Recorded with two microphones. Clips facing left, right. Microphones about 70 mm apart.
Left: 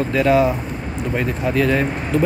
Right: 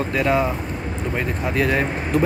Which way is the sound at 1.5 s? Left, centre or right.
Right.